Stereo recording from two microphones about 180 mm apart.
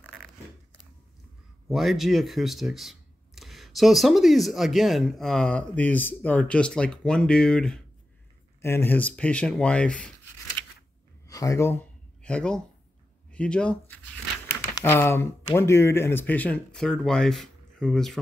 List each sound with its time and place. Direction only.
0.0 s zipper: 5° left (ahead or behind)
1.7 s speech: centre (ahead or behind)
10.6 s a sound: 10° left (ahead or behind)
11.2 s a sound: 20° left (ahead or behind)
13.3 s speech: 5° left (ahead or behind)
14.5 s crumpling: 15° left (ahead or behind)
15.5 s speech: 15° left (ahead or behind)